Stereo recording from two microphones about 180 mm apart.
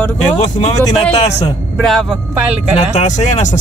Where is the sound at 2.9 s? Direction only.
40° left (ahead or behind).